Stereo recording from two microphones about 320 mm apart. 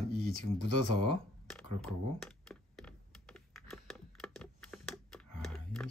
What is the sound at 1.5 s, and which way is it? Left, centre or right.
Computer keyboard, centre.